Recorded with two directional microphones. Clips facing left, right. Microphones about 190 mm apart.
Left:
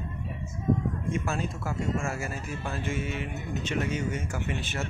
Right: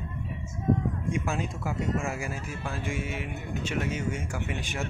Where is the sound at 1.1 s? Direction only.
15° right (ahead or behind).